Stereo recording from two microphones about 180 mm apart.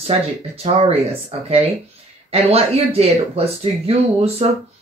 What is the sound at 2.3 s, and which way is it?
Speech, 35° right (ahead or behind).